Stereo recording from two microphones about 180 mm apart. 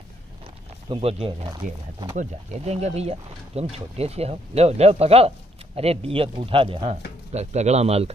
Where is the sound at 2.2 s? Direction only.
40° right (ahead or behind).